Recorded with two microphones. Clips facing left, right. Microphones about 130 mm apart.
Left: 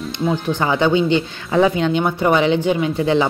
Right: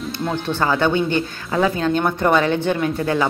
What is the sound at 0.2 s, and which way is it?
Speech, 5° left (ahead or behind).